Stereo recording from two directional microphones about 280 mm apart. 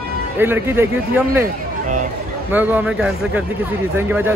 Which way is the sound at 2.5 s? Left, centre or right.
Centre.